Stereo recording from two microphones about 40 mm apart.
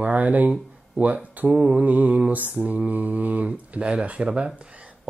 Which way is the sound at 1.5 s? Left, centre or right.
Centre.